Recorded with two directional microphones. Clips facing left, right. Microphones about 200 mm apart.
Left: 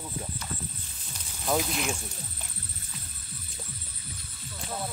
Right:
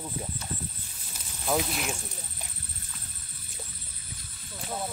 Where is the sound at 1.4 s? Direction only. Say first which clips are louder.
Left 1 dB; centre (ahead or behind).